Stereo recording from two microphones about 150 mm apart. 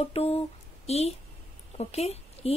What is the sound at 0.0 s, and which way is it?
A woman's voice, 40° left (ahead or behind).